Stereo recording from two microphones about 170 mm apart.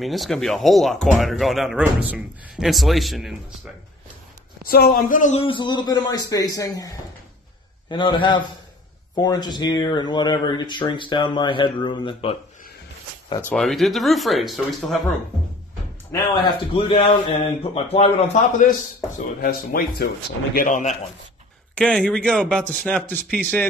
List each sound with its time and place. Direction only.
0.0 s speech: centre (ahead or behind)
4.6 s speech: 60° left (ahead or behind)
5.3 s speech: 30° left (ahead or behind)
7.9 s speech: 25° left (ahead or behind)
13.4 s speech: 5° left (ahead or behind)
16.1 s a man's voice: 20° left (ahead or behind); by 18.7 s 40° left (ahead or behind)
19.4 s speech: 60° left (ahead or behind)
20.5 s speech: 50° left (ahead or behind)
21.7 s speech: 5° left (ahead or behind)